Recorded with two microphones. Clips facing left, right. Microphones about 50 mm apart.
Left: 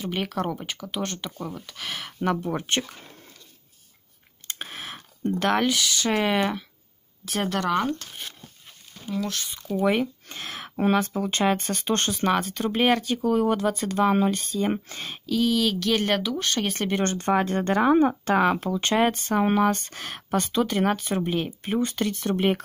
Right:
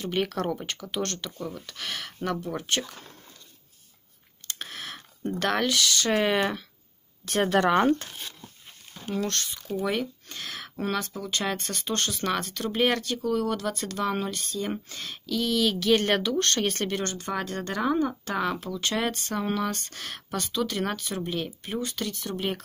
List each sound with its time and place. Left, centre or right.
0.0 s speech: centre
1.1 s speech: centre
2.4 s speech: left
4.5 s speech: centre
7.6 s speech: right
9.8 s speech: left
12.3 s speech: centre
13.2 s speech: left
15.2 s speech: centre
17.0 s speech: left